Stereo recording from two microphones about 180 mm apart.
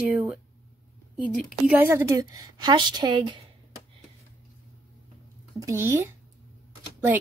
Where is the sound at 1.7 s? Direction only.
10° right (ahead or behind).